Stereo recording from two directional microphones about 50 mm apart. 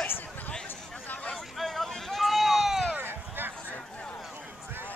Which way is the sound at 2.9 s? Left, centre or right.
Right.